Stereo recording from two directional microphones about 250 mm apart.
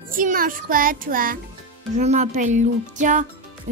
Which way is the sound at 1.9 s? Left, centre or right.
Right.